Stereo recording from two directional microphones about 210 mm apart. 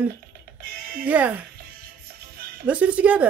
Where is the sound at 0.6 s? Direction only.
45° right (ahead or behind).